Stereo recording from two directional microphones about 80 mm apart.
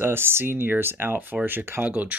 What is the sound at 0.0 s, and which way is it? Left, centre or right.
Speech, right.